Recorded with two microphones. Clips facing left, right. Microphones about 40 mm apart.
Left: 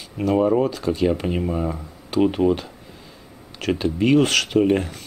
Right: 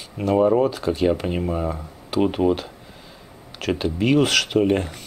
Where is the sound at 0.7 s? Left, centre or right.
Right.